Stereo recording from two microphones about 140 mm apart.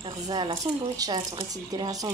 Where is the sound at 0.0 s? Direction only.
35° right (ahead or behind).